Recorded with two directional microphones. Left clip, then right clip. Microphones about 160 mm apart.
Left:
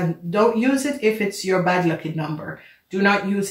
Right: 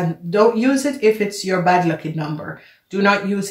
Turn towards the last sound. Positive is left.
turn(degrees=-35)  # may be behind; listen again after turning